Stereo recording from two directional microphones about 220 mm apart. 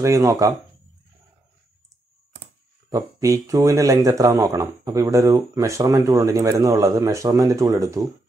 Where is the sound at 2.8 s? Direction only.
15° right (ahead or behind).